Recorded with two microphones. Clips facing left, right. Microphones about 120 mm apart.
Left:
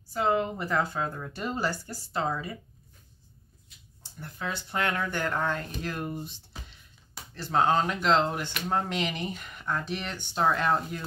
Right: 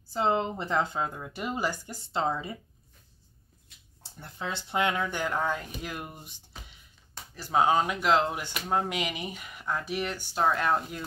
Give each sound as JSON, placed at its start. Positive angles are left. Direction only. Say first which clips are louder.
{"t": 0.1, "sound": "a woman's voice", "louder": "even", "side_deg": -25}
{"t": 4.2, "sound": "speech", "louder": "left 1 dB", "side_deg": -25}